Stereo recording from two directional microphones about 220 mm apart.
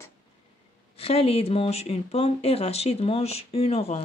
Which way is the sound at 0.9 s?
25° left (ahead or behind).